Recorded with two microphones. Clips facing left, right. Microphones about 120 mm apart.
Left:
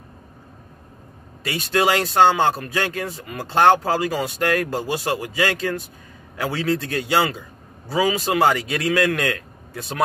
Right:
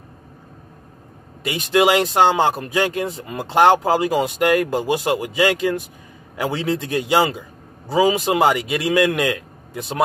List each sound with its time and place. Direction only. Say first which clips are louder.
1.4 s speech: right 4 dB; 15° right (ahead or behind)